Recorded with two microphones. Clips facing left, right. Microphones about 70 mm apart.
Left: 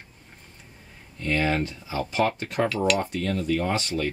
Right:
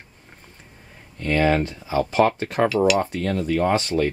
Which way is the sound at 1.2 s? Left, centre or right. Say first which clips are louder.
Right 5 dB; right.